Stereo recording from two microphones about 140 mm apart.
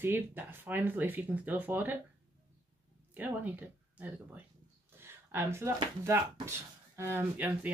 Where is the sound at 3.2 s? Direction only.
10° right (ahead or behind).